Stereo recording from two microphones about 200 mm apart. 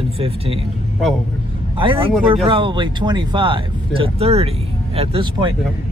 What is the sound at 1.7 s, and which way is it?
Speech, 25° right (ahead or behind).